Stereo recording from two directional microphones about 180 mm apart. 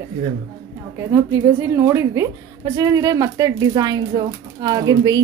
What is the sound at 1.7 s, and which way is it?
Speech, 15° right (ahead or behind).